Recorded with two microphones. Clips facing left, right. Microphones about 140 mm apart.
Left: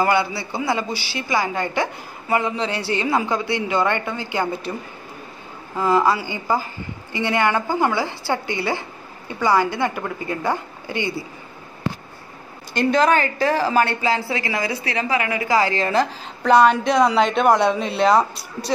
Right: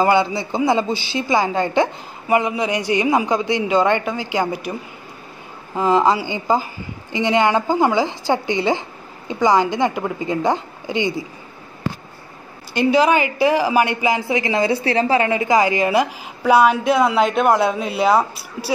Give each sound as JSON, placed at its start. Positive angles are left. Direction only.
{"t": 0.0, "sound": "speech", "side_deg": -20}
{"t": 5.8, "sound": "a woman's voice", "side_deg": -20}
{"t": 12.7, "sound": "a woman's voice", "side_deg": -10}